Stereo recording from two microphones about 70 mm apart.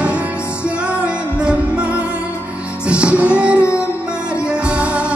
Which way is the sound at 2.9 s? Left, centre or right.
Centre.